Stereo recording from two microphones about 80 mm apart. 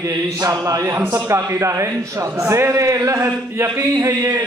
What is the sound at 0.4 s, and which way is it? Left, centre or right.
A man's voice, right.